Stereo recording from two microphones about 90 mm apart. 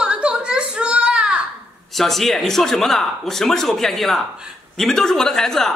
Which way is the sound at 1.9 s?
Centre (ahead or behind).